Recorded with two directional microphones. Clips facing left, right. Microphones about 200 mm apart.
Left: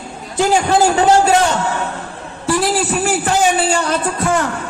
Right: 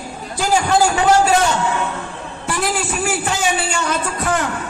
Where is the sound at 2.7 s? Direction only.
40° left (ahead or behind).